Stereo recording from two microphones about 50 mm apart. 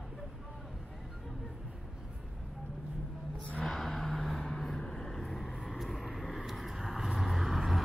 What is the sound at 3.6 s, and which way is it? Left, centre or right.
Vehicle, centre.